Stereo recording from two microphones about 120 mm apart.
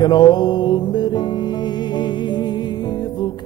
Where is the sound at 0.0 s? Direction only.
35° left (ahead or behind).